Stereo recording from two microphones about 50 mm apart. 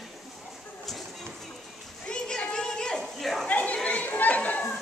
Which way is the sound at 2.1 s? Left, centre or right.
Centre.